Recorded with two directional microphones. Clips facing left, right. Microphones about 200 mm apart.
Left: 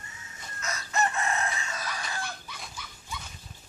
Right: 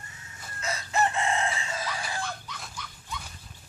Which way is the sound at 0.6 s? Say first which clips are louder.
Right 2 dB; 30° right (ahead or behind).